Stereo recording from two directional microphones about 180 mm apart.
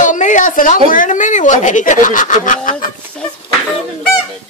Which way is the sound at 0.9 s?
45° left (ahead or behind).